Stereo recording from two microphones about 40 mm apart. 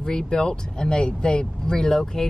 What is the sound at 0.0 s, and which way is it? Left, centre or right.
Speech, centre.